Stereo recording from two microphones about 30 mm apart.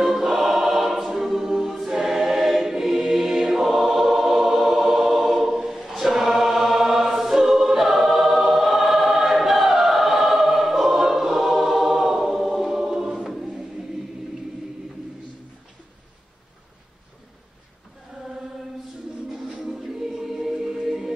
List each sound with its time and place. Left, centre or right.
0.0 s choir: centre
19.7 s choir: centre
20.5 s music: right
20.8 s music: centre